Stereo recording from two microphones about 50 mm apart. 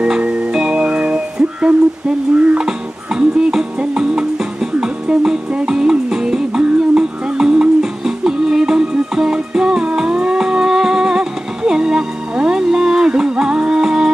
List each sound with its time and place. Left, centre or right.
0.0 s music: right